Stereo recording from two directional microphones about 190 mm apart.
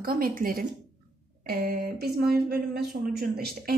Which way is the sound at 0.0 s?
50° right (ahead or behind).